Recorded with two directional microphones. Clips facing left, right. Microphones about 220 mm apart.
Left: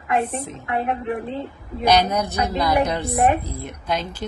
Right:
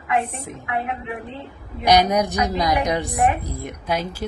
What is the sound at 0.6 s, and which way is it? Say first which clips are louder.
Speech: left 2 dB; 35° left (ahead or behind).